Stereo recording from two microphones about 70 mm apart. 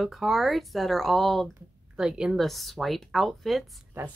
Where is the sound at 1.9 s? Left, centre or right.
Centre.